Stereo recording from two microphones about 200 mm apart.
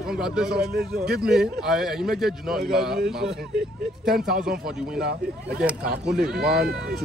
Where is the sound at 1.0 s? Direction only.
50° right (ahead or behind).